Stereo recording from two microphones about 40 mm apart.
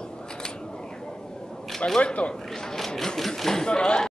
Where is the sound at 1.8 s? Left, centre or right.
Left.